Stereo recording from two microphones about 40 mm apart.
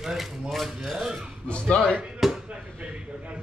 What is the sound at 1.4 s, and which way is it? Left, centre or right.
Speech, left.